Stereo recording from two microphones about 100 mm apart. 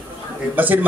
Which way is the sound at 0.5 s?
15° right (ahead or behind).